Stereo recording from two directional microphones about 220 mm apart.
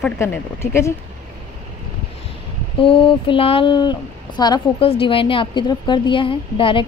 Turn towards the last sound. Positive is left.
turn(degrees=25)  # may be behind; listen again after turning